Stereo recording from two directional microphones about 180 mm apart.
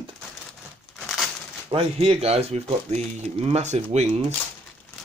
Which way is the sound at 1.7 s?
30° right (ahead or behind).